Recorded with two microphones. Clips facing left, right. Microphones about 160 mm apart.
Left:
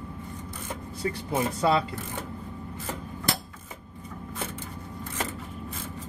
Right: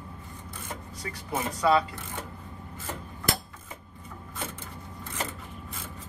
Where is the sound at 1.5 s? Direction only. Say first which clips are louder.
Right 2 dB; 30° left (ahead or behind).